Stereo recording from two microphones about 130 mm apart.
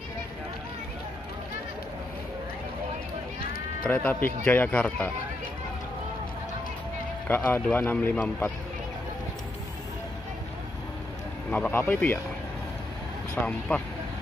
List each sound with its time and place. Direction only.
3.8 s speech: 10° left (ahead or behind)
7.2 s speech: 15° left (ahead or behind)
11.5 s speech: 10° left (ahead or behind)
13.3 s speech: 10° left (ahead or behind)